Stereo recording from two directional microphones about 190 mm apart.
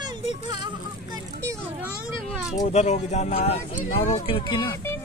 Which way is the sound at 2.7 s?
35° left (ahead or behind).